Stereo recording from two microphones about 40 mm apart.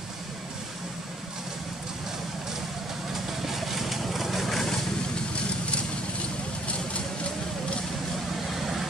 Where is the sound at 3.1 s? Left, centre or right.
Centre.